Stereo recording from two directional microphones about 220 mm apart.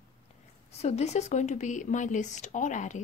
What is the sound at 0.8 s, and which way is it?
Speech, 30° left (ahead or behind).